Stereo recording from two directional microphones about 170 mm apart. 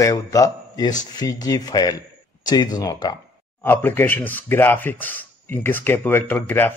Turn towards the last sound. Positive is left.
turn(degrees=10)  # may be behind; listen again after turning